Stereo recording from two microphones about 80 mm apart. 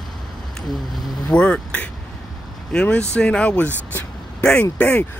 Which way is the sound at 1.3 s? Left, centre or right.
Centre.